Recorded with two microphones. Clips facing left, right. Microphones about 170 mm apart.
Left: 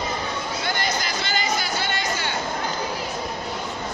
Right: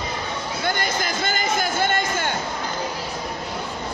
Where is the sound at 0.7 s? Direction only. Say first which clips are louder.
Right 3 dB; 50° right (ahead or behind).